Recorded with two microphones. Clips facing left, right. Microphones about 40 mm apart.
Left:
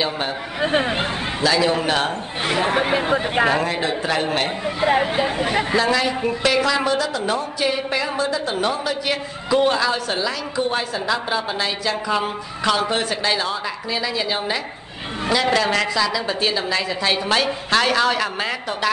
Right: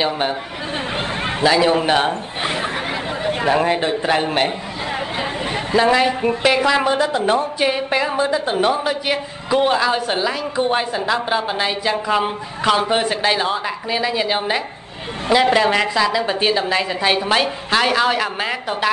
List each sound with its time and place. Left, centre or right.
1.4 s speech: right
2.6 s speech: left
3.5 s speech: centre
5.1 s speech: centre
5.8 s a woman's voice: right